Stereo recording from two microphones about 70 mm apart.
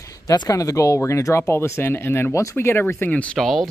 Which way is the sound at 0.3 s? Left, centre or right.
Left.